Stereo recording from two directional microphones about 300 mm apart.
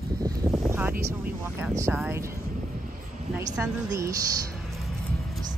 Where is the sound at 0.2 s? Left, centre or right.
Centre.